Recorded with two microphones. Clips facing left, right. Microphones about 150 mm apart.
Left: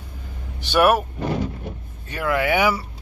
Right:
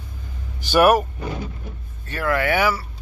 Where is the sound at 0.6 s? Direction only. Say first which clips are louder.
Right 2 dB; centre (ahead or behind).